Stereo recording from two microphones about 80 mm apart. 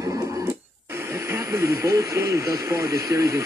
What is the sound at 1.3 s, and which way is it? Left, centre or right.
Speech, right.